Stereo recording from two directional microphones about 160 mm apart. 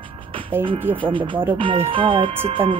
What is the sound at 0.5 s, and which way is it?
Speech, 15° right (ahead or behind).